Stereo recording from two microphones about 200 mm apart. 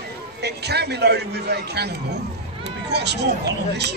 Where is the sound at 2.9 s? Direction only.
55° right (ahead or behind).